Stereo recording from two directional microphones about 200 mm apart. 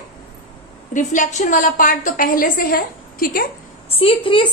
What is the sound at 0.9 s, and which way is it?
A woman's voice, 40° left (ahead or behind).